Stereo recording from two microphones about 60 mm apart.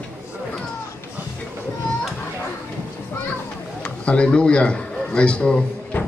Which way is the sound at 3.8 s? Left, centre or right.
Centre.